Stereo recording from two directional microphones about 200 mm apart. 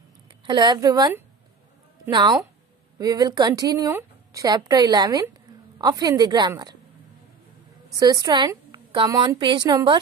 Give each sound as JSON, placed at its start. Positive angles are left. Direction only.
{"t": 0.5, "sound": "a woman's voice", "side_deg": -20}
{"t": 7.9, "sound": "a woman's voice", "side_deg": -20}